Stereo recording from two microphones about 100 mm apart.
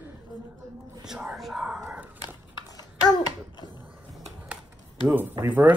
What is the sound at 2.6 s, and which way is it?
Babbling, 40° left (ahead or behind).